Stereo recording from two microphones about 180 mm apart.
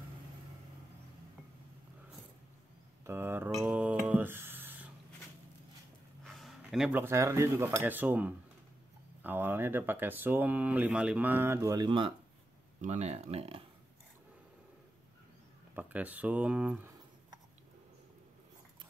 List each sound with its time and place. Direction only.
3.1 s speech: 10° right (ahead or behind)
3.5 s a sound: 10° right (ahead or behind)
6.2 s speech: centre (ahead or behind); by 12.1 s 25° right (ahead or behind)
12.8 s speech: 40° right (ahead or behind)
15.7 s speech: 10° right (ahead or behind)